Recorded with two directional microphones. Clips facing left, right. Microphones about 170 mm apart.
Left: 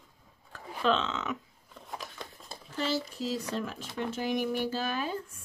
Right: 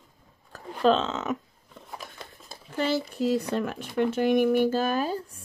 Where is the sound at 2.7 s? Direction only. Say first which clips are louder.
Right 5 dB; 55° right (ahead or behind); by 5.4 s 40° right (ahead or behind).